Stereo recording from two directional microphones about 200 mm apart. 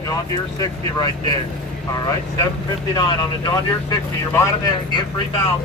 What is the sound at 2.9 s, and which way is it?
Speech, 20° left (ahead or behind).